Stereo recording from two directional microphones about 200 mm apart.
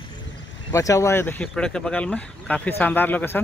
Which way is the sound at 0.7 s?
15° left (ahead or behind).